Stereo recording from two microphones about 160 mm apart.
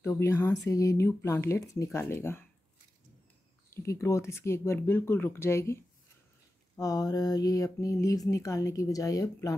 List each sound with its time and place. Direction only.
0.0 s speech: 15° left (ahead or behind)
3.7 s speech: 20° left (ahead or behind)
6.8 s speech: 20° left (ahead or behind)